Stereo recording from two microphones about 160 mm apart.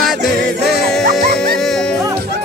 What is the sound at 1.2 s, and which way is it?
Music, 70° right (ahead or behind).